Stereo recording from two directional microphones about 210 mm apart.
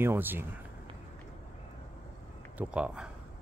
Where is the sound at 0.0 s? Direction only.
10° right (ahead or behind).